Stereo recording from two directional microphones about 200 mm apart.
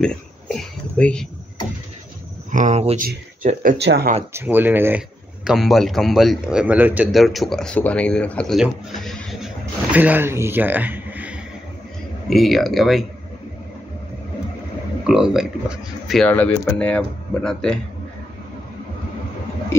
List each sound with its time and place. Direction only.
0.0 s speech: 5° left (ahead or behind)
2.5 s speech: 35° right (ahead or behind)
3.7 s speech: 55° right (ahead or behind)
4.3 s a man's voice: 10° right (ahead or behind)
15.0 s a man's voice: 5° right (ahead or behind)
19.7 s a sound: 15° left (ahead or behind)